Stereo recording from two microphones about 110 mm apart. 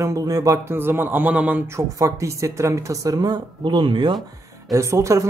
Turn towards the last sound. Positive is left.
turn(degrees=-25)  # may be behind; listen again after turning